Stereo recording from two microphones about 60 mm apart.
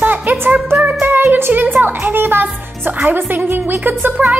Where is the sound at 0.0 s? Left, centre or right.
Right.